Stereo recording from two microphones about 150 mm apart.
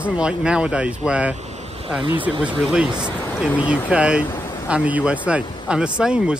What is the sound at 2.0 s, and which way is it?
Speech, 35° right (ahead or behind).